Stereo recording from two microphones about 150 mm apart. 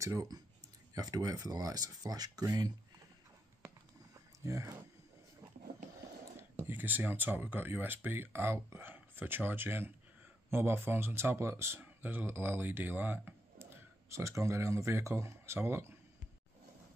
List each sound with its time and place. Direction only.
0.0 s speech: 20° right (ahead or behind)
4.5 s speech: 20° right (ahead or behind)
6.7 s speech: 10° right (ahead or behind)